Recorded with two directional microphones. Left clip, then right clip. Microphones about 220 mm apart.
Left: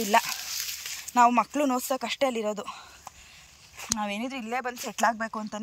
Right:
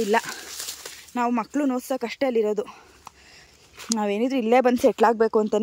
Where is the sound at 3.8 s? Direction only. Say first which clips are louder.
Right 7 dB; 25° right (ahead or behind).